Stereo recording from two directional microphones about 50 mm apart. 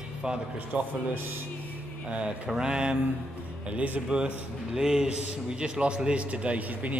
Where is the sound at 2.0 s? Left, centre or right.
Right.